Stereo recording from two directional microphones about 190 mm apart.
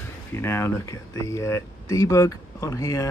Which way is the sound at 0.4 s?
15° left (ahead or behind).